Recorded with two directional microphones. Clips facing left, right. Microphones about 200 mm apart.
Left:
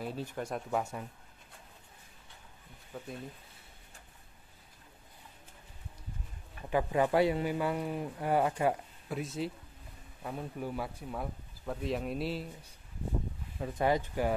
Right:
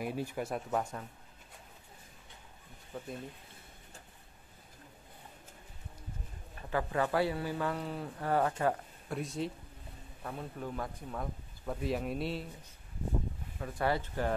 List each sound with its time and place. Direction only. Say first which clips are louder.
0.0 s speech: right 2 dB; 10° right (ahead or behind)
2.9 s speech: right 1 dB; 5° left (ahead or behind)
6.7 s speech: left 3 dB; 15° left (ahead or behind); by 12.4 s centre (ahead or behind)
13.6 s speech: left 3 dB; 20° left (ahead or behind)